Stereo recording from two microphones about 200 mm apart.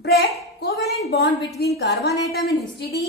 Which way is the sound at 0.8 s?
Centre (ahead or behind).